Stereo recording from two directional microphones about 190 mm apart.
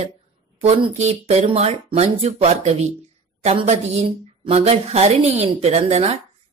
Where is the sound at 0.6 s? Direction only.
35° right (ahead or behind).